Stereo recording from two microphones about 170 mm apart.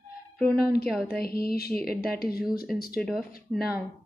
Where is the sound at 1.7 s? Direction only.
Centre (ahead or behind).